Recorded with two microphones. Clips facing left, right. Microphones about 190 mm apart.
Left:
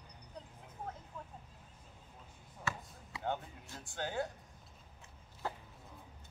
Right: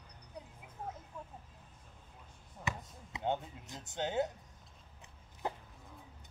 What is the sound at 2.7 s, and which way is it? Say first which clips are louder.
Basketball bounce: right 1 dB; 20° right (ahead or behind).